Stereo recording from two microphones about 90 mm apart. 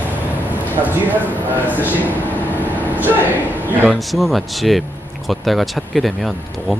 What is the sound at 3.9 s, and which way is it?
Speech, centre (ahead or behind).